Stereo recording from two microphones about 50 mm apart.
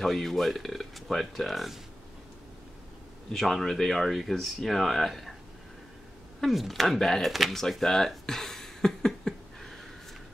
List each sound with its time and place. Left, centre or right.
0.0 s speech: centre
3.3 s speech: centre
6.4 s speech: centre
7.3 s speech: centre
7.8 s a sound: centre